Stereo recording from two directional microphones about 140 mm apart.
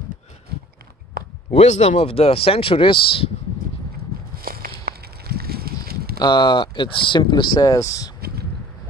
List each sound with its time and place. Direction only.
1.5 s speech: 50° left (ahead or behind)
4.4 s a sound: 90° right
6.1 s speech: 30° left (ahead or behind)